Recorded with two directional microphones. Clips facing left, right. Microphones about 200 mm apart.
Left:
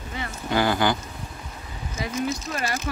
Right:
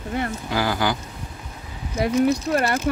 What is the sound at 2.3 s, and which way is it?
Speech, 60° right (ahead or behind).